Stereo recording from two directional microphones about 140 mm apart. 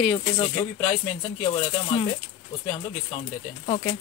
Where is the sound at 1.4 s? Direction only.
35° left (ahead or behind).